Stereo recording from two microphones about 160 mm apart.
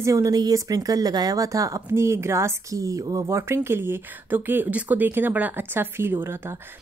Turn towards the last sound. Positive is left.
turn(degrees=-15)  # may be behind; listen again after turning